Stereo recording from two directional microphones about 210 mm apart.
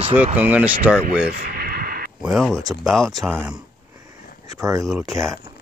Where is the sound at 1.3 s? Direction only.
45° right (ahead or behind).